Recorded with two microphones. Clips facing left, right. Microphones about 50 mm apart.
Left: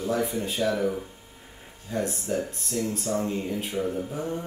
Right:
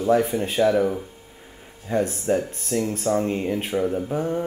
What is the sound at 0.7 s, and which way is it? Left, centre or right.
Speech, right.